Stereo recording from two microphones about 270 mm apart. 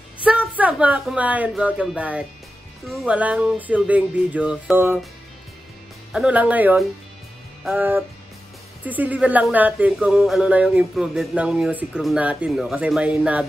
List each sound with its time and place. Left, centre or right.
0.2 s a woman's voice: centre
6.1 s speech: centre